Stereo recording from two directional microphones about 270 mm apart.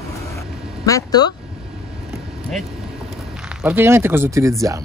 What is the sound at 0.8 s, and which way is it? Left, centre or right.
Speech, centre.